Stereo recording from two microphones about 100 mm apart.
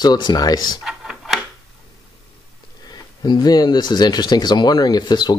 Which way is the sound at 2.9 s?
45° left (ahead or behind).